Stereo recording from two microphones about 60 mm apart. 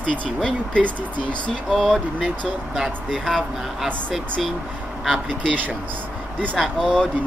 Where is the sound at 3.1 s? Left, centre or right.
Centre.